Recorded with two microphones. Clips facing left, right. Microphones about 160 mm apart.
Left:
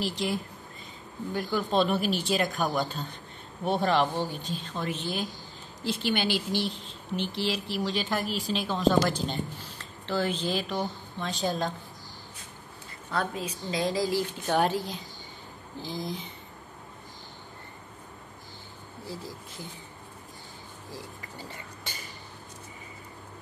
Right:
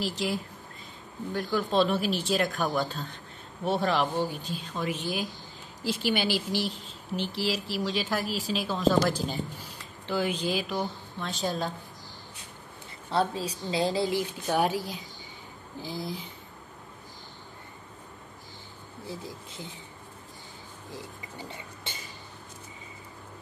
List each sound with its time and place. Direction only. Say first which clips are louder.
0.0 s a woman's voice: even; centre (ahead or behind)
13.1 s a woman's voice: right 3 dB; 30° right (ahead or behind)
14.1 s a woman's voice: left 1 dB; 10° right (ahead or behind)
19.0 s a woman's voice: even; 20° right (ahead or behind)
20.9 s a sound: right 1 dB; 20° right (ahead or behind)